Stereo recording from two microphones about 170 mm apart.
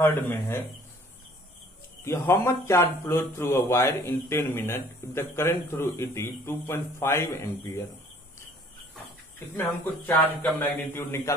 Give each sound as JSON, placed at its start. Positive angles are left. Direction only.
{"t": 0.0, "sound": "speech", "side_deg": 15}
{"t": 2.0, "sound": "speech", "side_deg": 15}
{"t": 9.6, "sound": "speech", "side_deg": 15}